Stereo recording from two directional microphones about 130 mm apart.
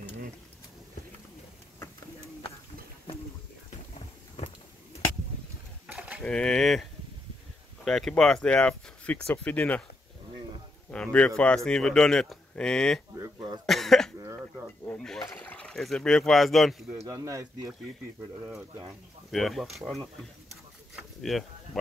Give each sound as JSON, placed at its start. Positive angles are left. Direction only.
{"t": 5.9, "sound": "pigeon", "side_deg": -10}
{"t": 6.2, "sound": "a man's voice", "side_deg": 5}
{"t": 10.9, "sound": "a man's voice", "side_deg": 10}
{"t": 13.7, "sound": "cough", "side_deg": 0}
{"t": 14.9, "sound": "a sound", "side_deg": 5}
{"t": 15.3, "sound": "speech", "side_deg": 10}
{"t": 16.9, "sound": "speech", "side_deg": -25}
{"t": 19.3, "sound": "speech", "side_deg": 0}
{"t": 21.2, "sound": "speech", "side_deg": 0}